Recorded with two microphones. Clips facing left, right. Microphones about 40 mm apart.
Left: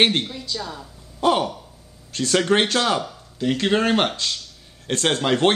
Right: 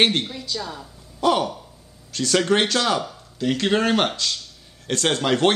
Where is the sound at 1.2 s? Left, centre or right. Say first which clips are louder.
Even; centre.